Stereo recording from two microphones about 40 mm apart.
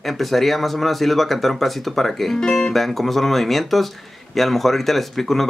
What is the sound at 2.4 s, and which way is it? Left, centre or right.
Music, centre.